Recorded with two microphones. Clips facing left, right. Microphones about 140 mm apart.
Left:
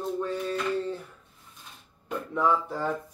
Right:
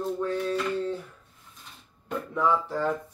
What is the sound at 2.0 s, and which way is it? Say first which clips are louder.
Speech: even; 5° left (ahead or behind).